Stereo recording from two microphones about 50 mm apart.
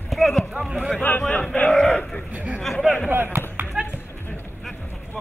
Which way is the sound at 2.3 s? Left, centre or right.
Right.